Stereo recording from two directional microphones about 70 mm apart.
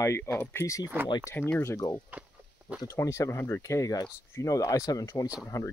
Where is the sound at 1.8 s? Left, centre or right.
Left.